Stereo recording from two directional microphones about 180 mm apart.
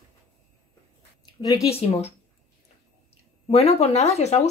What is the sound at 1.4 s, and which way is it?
Speech, 20° left (ahead or behind).